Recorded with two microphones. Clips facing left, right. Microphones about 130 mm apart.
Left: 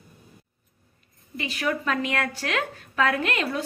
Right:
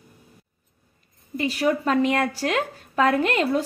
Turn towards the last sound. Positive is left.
turn(degrees=-30)  # may be behind; listen again after turning